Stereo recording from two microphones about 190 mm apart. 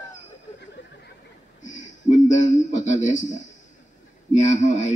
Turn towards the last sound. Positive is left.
turn(degrees=40)  # may be behind; listen again after turning